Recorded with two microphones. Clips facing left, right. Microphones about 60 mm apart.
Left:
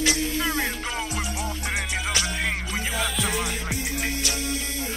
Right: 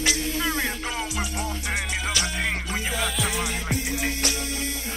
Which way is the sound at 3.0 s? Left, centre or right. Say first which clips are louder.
Left 2 dB; centre.